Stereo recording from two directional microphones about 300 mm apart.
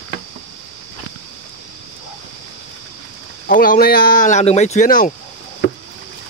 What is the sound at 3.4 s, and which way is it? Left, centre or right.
Speech, left.